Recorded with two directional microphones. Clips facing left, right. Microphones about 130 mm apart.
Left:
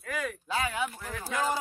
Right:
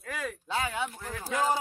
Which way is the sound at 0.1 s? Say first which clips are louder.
Left 1 dB; 30° right (ahead or behind).